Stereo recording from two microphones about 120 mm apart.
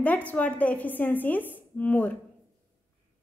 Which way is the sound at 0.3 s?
15° left (ahead or behind).